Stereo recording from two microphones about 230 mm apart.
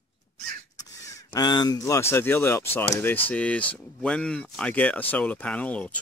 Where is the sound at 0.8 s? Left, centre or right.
Centre.